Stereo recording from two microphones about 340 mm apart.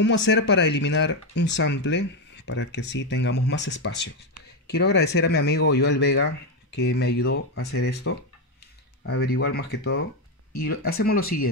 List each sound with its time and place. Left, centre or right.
0.0 s speech: left
9.3 s speech: left